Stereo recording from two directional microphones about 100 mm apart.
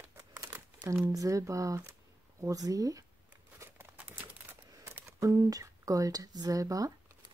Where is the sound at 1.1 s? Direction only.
35° right (ahead or behind).